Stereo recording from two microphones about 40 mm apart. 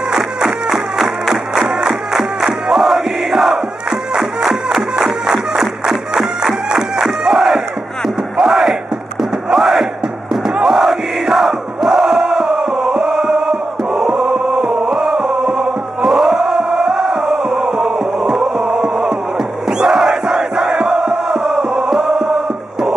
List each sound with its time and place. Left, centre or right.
0.1 s music: centre
2.8 s music: centre
7.3 s battle cry: centre
9.5 s crowd: centre
13.5 s chant: right
14.5 s music: centre